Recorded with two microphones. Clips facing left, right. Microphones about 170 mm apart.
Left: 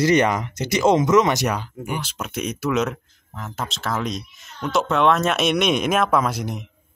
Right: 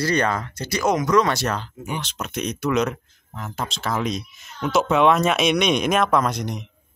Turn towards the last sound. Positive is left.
turn(degrees=5)  # may be behind; listen again after turning